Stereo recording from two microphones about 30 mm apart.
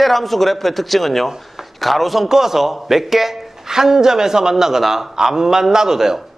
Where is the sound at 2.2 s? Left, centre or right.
Centre.